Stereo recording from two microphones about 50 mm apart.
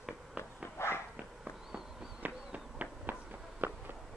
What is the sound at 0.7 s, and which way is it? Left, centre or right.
Dog, left.